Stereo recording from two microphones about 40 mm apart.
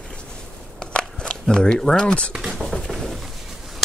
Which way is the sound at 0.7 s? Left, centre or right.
Left.